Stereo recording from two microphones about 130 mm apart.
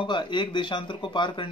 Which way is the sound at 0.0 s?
35° left (ahead or behind).